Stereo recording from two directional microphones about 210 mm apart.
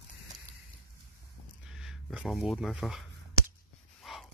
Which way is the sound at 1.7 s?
5° right (ahead or behind).